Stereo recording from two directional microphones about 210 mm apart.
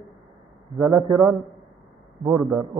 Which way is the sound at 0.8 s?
20° right (ahead or behind).